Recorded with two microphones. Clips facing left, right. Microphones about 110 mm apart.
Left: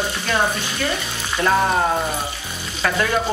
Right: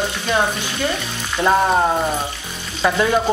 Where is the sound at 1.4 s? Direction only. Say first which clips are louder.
Right 2 dB; 15° right (ahead or behind).